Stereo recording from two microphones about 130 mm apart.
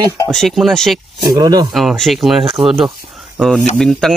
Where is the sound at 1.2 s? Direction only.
30° right (ahead or behind).